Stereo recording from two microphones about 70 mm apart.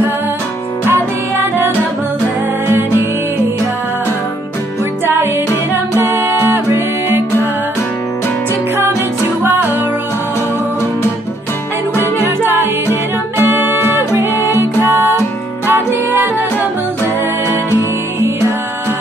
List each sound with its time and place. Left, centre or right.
5.9 s music: right
12.2 s music: right